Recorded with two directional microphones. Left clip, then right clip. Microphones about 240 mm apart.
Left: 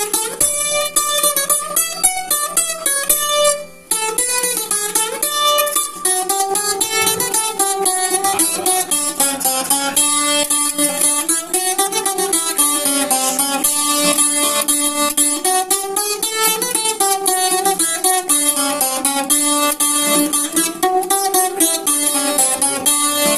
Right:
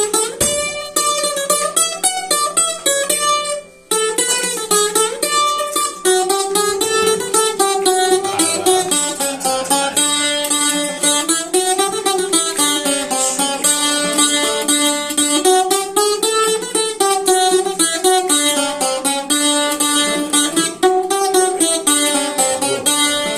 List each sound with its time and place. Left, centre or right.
7.5 s music: left
20.1 s music: left